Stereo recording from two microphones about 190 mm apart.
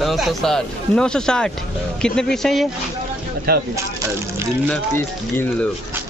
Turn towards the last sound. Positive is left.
turn(degrees=10)  # may be behind; listen again after turning